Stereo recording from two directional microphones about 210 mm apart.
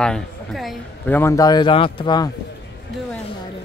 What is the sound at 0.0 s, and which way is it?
A man's voice, 5° left (ahead or behind).